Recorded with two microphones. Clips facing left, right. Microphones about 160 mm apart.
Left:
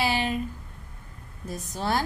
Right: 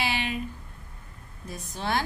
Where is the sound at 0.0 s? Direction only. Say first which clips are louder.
Left 4 dB; 40° left (ahead or behind).